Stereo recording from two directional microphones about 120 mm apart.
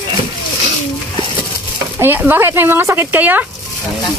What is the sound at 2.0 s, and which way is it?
Speech, 15° right (ahead or behind).